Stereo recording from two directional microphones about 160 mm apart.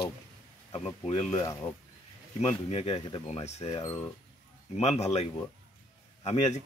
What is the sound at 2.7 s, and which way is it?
Speech, 40° left (ahead or behind).